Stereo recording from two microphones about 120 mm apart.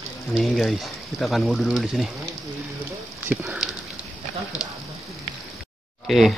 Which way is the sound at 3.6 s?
5° right (ahead or behind).